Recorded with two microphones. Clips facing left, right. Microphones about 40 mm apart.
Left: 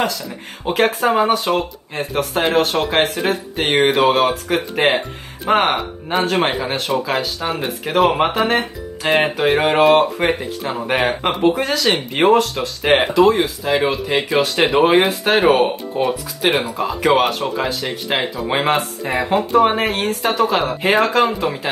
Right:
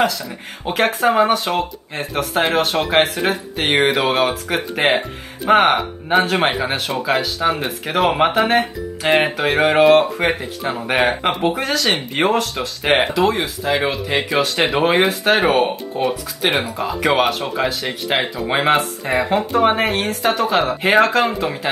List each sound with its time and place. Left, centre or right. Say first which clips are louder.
0.7 s speech: even; centre